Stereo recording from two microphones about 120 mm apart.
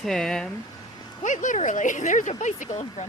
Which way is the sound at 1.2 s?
90° left.